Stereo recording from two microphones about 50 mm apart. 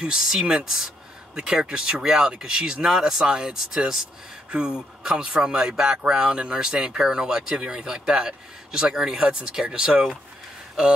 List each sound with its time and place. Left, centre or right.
0.0 s speech: centre
4.5 s speech: centre